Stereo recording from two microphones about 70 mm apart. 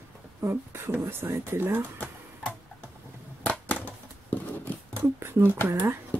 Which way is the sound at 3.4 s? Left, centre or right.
Centre.